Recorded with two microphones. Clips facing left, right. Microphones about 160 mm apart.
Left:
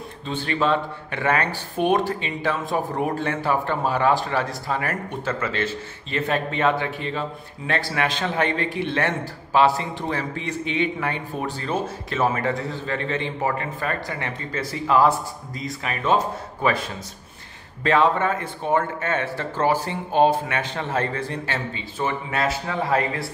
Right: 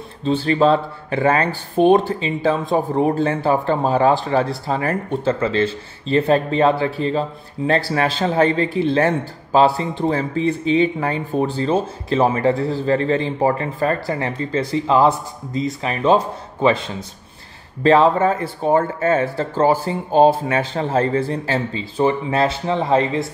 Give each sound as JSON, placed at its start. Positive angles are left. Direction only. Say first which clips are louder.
{"t": 0.2, "sound": "a man's voice", "louder": "right 8 dB", "side_deg": -30}